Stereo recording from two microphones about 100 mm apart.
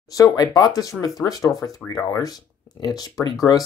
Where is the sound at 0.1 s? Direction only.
35° left (ahead or behind).